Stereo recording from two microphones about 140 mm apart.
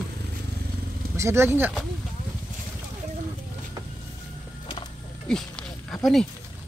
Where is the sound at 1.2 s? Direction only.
20° right (ahead or behind).